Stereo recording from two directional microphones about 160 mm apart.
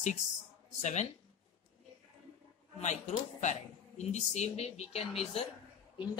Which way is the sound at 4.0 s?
45° left (ahead or behind).